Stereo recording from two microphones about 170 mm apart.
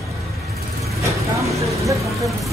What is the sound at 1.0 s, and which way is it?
Speech, 20° right (ahead or behind).